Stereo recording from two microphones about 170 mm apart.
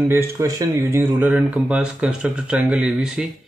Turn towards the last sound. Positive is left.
turn(degrees=-5)  # may be behind; listen again after turning